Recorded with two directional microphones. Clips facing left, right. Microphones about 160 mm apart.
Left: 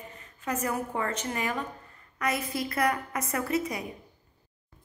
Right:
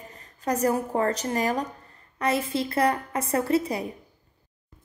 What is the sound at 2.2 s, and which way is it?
A woman's voice, 30° right (ahead or behind).